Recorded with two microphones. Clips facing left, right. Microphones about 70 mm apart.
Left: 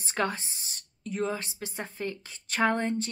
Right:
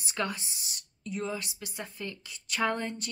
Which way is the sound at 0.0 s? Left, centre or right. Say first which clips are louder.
Left 4 dB; left.